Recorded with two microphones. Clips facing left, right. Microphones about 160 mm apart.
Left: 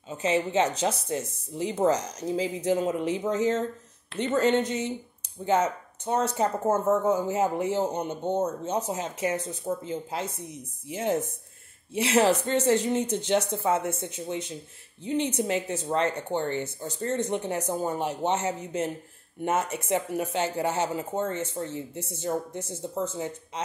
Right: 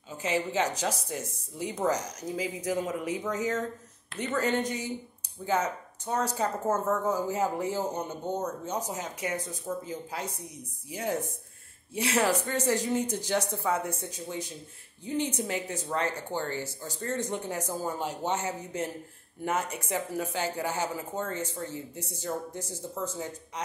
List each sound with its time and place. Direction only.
0.1 s speech: 25° left (ahead or behind)